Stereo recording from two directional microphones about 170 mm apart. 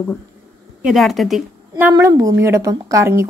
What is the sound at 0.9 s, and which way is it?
Speech, centre (ahead or behind).